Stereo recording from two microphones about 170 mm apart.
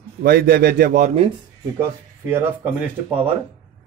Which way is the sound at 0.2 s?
65° right (ahead or behind).